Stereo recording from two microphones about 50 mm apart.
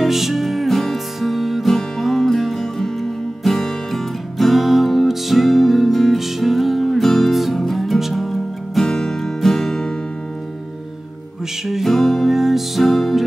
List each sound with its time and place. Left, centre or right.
0.0 s music: centre
8.8 s music: centre
11.6 s music: centre